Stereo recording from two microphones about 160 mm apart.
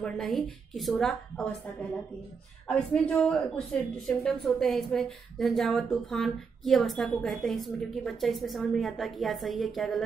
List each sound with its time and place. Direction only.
0.0 s a woman's voice: centre (ahead or behind)